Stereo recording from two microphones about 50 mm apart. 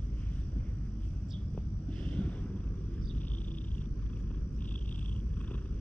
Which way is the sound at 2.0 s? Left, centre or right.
Left.